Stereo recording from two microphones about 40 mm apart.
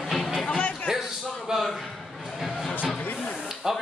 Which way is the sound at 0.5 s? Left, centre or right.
Left.